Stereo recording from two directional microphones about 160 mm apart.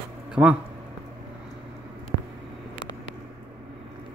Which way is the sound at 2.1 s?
90° right.